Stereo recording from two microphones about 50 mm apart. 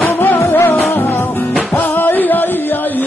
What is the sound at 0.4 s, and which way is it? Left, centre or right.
Music, left.